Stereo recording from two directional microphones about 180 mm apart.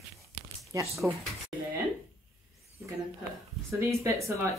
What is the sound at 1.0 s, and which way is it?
Speech, 10° right (ahead or behind).